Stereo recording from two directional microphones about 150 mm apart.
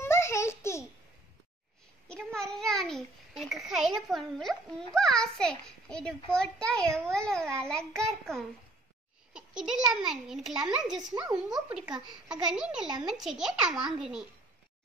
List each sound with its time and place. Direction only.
0.0 s a sound: 15° left (ahead or behind)
2.0 s a child's voice: 5° left (ahead or behind)
9.3 s a sound: 5° right (ahead or behind)
10.0 s a child's voice: centre (ahead or behind)
11.1 s speech: 25° right (ahead or behind)
11.3 s a child's voice: 5° right (ahead or behind)